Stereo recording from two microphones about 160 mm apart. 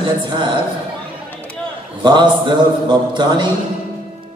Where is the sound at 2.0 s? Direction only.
30° right (ahead or behind).